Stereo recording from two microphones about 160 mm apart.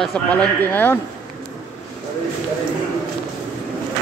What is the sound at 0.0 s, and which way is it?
Speech, 5° left (ahead or behind).